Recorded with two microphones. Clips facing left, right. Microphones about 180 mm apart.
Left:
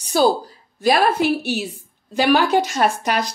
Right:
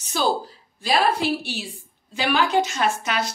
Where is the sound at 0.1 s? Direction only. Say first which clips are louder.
Left 7 dB; 40° left (ahead or behind).